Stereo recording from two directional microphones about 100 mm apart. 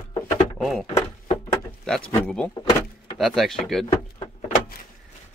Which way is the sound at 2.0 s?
15° left (ahead or behind).